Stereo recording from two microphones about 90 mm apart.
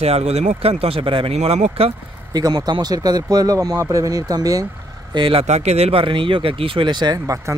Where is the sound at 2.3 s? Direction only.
50° right (ahead or behind).